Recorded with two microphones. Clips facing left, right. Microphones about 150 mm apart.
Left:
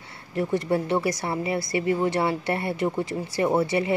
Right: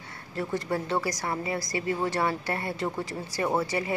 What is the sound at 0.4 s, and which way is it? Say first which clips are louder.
Speech: left 6 dB; 20° left (ahead or behind).